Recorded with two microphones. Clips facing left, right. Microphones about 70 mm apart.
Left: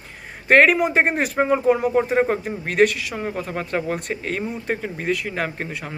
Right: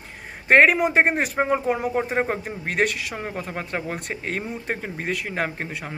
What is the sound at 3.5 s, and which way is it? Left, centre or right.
Speech, centre.